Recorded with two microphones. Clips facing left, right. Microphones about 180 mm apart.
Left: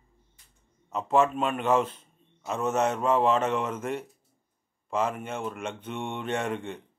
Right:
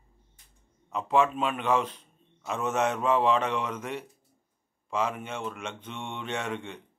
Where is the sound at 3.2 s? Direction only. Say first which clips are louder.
Left 1 dB; 40° left (ahead or behind).